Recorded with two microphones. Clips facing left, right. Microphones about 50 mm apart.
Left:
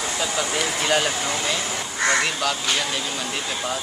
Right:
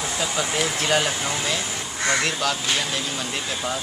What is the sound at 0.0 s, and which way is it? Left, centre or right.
Speech, centre.